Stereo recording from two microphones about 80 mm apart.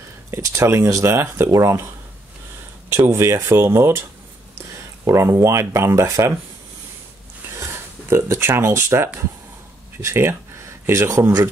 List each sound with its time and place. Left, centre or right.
0.3 s speech: right
2.9 s speech: right
8.1 s speech: right